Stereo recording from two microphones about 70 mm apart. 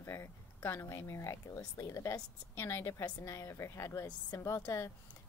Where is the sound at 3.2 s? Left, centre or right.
Left.